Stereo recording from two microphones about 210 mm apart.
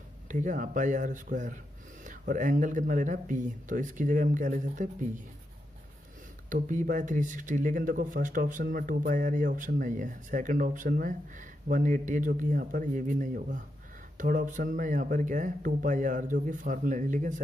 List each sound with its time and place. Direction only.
0.3 s speech: 40° right (ahead or behind)
6.5 s speech: 40° right (ahead or behind)